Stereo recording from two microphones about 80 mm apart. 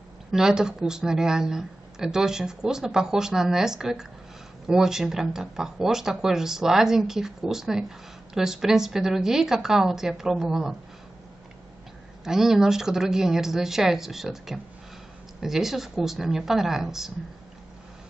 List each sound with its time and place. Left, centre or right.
0.3 s speech: centre
12.3 s speech: centre